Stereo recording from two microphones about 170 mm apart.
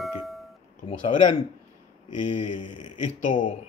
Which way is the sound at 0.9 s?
30° left (ahead or behind).